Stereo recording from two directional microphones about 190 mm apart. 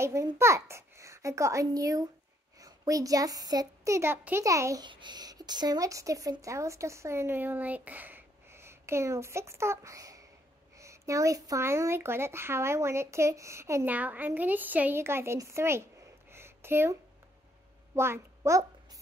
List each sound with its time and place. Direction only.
0.0 s a child's voice: 15° right (ahead or behind)
16.3 s a sound: 15° right (ahead or behind)
17.9 s a child's voice: 15° right (ahead or behind)